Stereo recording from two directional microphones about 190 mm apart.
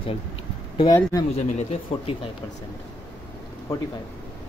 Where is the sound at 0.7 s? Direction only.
20° left (ahead or behind).